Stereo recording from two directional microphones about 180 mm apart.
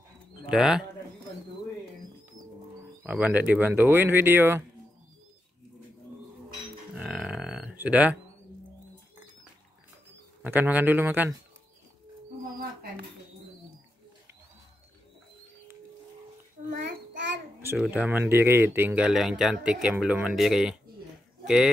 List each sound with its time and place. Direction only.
0.5 s speech: 5° right (ahead or behind)
3.0 s speech: 10° right (ahead or behind)
7.0 s grunt: 5° right (ahead or behind)
10.4 s speech: 10° right (ahead or behind)
16.6 s child singing: 45° right (ahead or behind)
17.7 s speech: 5° right (ahead or behind)